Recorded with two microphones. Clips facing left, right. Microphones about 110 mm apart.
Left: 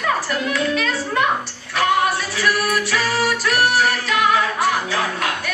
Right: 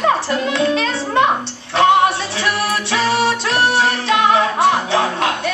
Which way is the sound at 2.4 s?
25° right (ahead or behind).